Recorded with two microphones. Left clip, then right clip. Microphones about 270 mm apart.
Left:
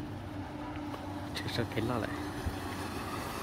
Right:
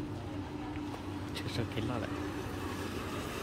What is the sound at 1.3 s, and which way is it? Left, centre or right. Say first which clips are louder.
Vehicle: left 4 dB; centre.